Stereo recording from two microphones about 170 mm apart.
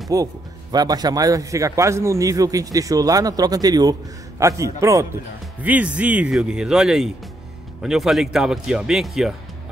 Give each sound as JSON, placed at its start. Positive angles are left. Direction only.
{"t": 0.1, "sound": "a man's voice", "side_deg": -20}